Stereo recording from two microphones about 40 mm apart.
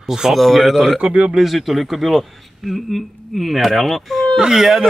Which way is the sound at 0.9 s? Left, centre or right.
Right.